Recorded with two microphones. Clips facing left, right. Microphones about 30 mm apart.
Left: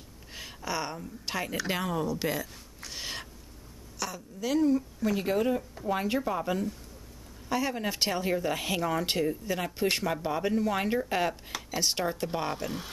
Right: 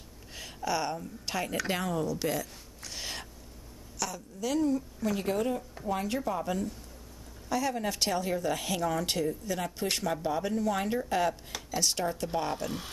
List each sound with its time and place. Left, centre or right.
0.3 s speech: centre